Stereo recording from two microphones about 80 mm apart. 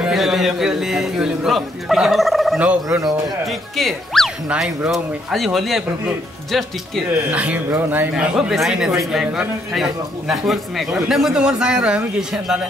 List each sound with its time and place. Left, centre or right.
0.0 s a man's voice: centre
2.6 s speech: centre
3.0 s a man's voice: centre
4.5 s a man's voice: centre
7.2 s speech: centre
8.2 s a man's voice: centre